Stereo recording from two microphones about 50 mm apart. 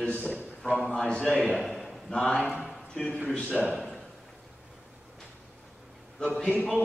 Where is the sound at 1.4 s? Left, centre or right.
Centre.